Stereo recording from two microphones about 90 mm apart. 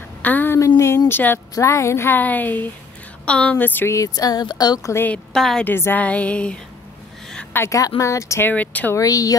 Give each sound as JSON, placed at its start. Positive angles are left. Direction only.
{"t": 0.2, "sound": "a sound", "side_deg": 20}
{"t": 0.6, "sound": "a sound", "side_deg": 35}
{"t": 1.5, "sound": "a woman's voice", "side_deg": 35}
{"t": 3.9, "sound": "speech", "side_deg": 40}
{"t": 4.9, "sound": "a woman's voice", "side_deg": 20}
{"t": 5.3, "sound": "a woman's voice", "side_deg": 5}
{"t": 5.7, "sound": "a sound", "side_deg": 25}
{"t": 7.5, "sound": "speech", "side_deg": 35}
{"t": 8.5, "sound": "a woman's voice", "side_deg": 20}
{"t": 8.9, "sound": "speech", "side_deg": 40}